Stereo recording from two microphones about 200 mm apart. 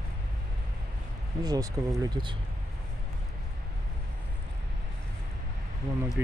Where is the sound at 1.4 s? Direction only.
20° right (ahead or behind).